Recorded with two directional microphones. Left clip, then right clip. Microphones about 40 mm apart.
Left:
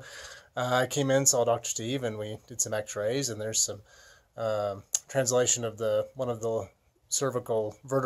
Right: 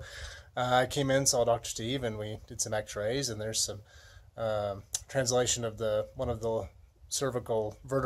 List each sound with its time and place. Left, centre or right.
0.0 s a sound: left
1.4 s speech: left
4.4 s speech: left
4.7 s speech: left
7.6 s speech: left